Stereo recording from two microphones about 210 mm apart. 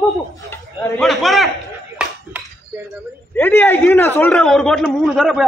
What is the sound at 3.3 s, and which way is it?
A man's voice, 10° left (ahead or behind).